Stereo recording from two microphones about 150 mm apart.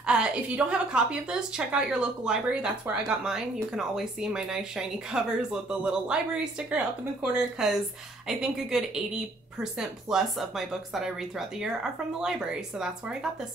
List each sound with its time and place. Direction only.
0.0 s speech: 5° right (ahead or behind)